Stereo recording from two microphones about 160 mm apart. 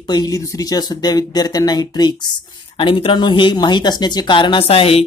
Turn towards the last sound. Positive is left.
turn(degrees=40)  # may be behind; listen again after turning